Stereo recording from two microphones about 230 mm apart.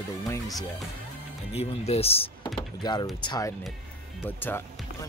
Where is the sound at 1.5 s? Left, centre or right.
Left; by 4.6 s centre.